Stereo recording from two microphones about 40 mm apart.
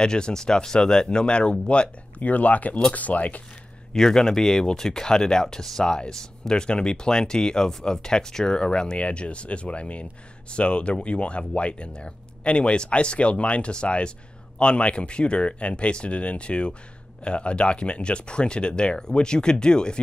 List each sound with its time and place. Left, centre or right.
0.0 s speech: centre
2.2 s speech: left
3.9 s speech: centre